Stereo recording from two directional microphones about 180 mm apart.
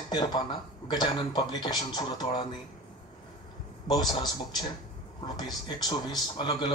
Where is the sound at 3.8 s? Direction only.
25° left (ahead or behind).